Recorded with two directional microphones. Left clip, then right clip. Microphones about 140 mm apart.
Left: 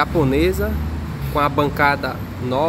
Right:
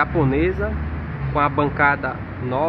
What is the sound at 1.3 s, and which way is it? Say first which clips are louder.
Speech: left 1 dB; 35° left (ahead or behind).